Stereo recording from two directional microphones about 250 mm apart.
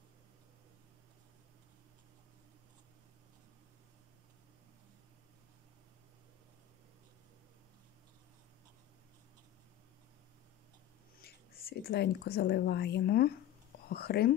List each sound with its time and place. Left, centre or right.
11.2 s speech: left